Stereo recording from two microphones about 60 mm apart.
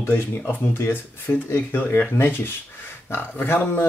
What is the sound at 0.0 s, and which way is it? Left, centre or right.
Speech, left.